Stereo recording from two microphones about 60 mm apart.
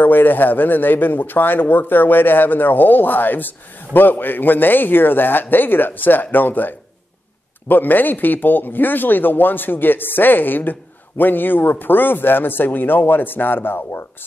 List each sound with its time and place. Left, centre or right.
0.0 s a man's voice: left